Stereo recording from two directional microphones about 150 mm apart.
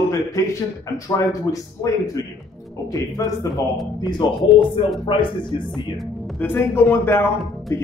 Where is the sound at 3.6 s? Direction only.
Centre (ahead or behind).